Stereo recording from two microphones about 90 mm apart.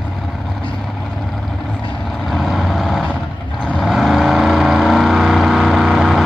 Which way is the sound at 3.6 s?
10° left (ahead or behind).